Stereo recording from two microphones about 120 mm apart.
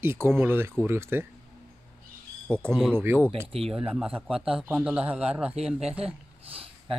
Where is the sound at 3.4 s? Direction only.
55° right (ahead or behind).